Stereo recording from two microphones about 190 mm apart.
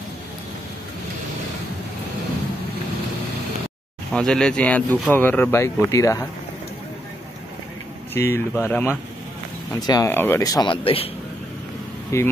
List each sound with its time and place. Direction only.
4.1 s speech: 5° left (ahead or behind)
8.1 s speech: 10° left (ahead or behind); by 11.1 s 30° left (ahead or behind)
12.1 s speech: 15° left (ahead or behind)